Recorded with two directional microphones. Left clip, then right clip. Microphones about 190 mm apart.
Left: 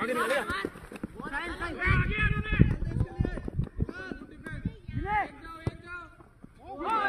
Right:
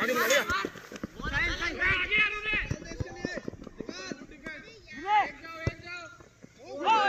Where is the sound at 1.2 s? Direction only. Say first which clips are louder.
Right 5 dB; 60° left (ahead or behind).